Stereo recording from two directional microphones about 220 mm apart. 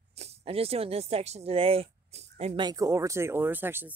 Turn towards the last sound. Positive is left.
turn(degrees=-10)  # may be behind; listen again after turning